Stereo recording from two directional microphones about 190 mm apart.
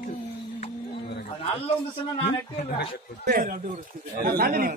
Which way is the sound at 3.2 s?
50° right (ahead or behind).